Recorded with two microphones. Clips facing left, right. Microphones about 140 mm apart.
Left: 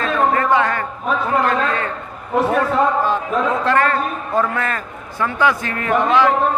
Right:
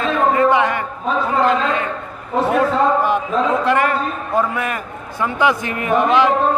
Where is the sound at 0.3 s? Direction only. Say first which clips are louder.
Right 2 dB; 20° right (ahead or behind).